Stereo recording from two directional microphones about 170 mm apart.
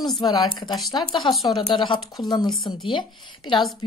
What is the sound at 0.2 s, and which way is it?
Speech, 25° left (ahead or behind).